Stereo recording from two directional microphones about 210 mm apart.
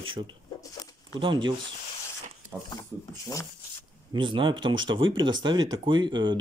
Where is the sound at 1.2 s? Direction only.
20° right (ahead or behind).